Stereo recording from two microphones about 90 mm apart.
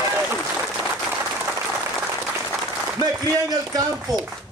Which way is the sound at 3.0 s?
45° right (ahead or behind).